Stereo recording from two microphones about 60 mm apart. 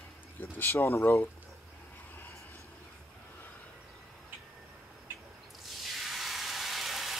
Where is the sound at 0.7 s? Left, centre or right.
Left.